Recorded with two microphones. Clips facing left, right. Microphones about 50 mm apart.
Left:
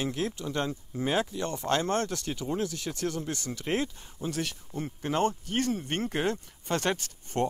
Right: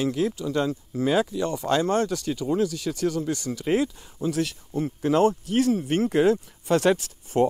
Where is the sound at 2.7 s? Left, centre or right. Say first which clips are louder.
Right 6 dB; left.